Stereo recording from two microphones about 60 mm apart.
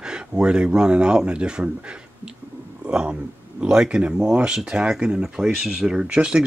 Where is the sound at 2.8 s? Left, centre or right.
Centre.